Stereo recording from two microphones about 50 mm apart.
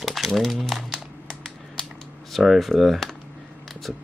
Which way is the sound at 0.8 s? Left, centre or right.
Centre.